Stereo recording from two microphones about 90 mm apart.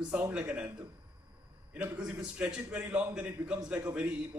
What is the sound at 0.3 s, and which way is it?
Speech, 10° right (ahead or behind).